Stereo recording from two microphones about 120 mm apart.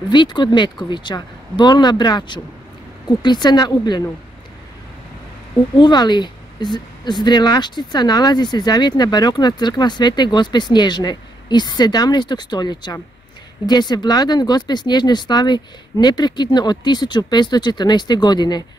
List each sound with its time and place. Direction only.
0.1 s speech: 40° left (ahead or behind)
5.8 s speech: 40° left (ahead or behind)